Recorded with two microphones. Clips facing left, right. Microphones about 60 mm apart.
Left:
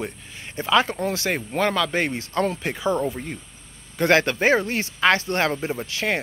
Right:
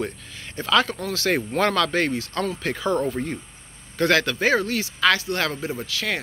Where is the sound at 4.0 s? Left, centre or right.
Left.